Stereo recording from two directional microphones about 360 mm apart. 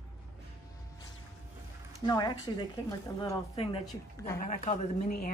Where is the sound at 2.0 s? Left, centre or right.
Centre.